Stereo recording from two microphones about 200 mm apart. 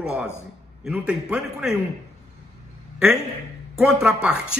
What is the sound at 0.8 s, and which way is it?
Speech, 5° right (ahead or behind).